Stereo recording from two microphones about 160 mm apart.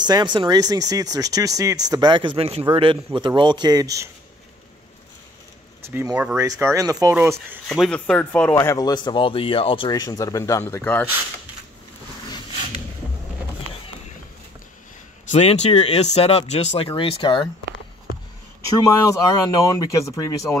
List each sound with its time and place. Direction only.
0.0 s a man's voice: 25° right (ahead or behind)
5.9 s speech: 15° right (ahead or behind)
7.6 s speech: centre (ahead or behind)
8.5 s speech: 25° left (ahead or behind)
10.7 s speech: 10° left (ahead or behind)
15.3 s speech: 45° left (ahead or behind)
19.0 s speech: 20° left (ahead or behind)